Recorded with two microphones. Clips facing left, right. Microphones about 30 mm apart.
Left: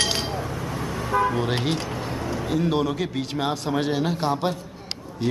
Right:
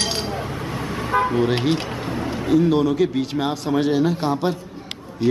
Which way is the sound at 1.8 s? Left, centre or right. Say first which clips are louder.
Right 3 dB; right.